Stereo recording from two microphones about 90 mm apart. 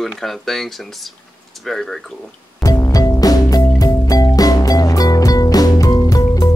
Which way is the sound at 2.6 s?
40° left (ahead or behind).